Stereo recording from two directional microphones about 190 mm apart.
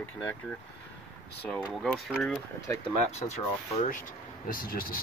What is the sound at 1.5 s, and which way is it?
Speech, centre (ahead or behind).